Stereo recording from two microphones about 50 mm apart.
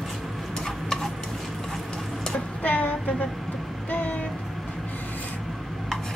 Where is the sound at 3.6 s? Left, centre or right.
Centre.